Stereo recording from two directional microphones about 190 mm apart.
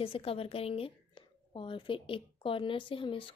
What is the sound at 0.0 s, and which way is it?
A woman's voice, 30° left (ahead or behind).